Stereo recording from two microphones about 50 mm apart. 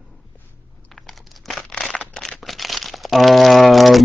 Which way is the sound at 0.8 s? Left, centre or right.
Centre.